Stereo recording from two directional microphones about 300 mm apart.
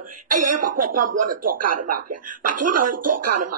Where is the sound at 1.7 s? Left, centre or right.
Right.